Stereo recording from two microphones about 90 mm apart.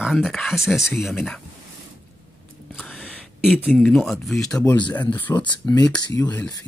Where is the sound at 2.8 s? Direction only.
5° left (ahead or behind).